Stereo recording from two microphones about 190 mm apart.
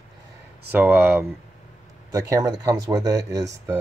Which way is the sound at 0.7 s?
10° right (ahead or behind).